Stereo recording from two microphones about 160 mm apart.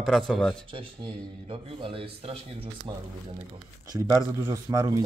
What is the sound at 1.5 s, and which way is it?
Speech, 35° right (ahead or behind).